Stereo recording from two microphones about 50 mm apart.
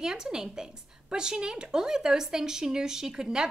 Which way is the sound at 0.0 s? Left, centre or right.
Centre.